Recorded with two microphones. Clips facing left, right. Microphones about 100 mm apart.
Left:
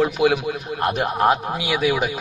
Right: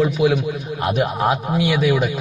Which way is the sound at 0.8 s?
Centre (ahead or behind).